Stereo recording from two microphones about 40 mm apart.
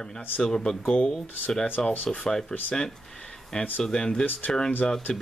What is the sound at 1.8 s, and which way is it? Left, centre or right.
Speech, centre.